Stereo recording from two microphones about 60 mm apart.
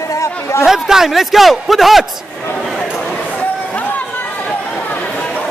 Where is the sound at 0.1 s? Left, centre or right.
Left.